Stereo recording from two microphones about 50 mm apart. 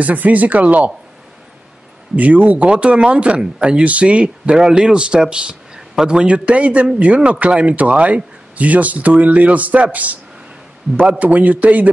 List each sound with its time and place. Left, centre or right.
0.0 s speech: right
2.1 s a man's voice: right